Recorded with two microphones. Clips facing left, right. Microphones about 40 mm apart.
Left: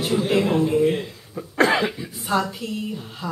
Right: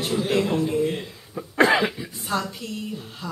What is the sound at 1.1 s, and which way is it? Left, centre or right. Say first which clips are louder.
Speech: even; centre.